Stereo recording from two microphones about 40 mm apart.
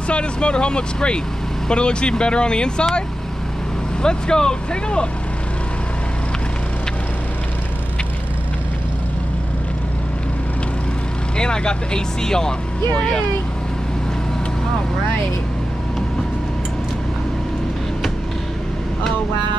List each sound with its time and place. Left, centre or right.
0.1 s speech: left
4.0 s speech: left
11.3 s speech: left